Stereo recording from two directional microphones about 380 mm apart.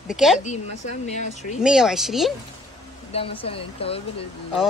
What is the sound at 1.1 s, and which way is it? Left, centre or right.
Speech, centre.